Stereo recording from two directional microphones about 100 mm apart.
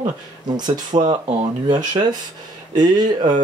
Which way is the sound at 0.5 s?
45° right (ahead or behind).